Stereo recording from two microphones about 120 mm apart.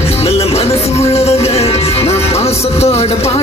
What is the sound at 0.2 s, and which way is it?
Music, 55° left (ahead or behind).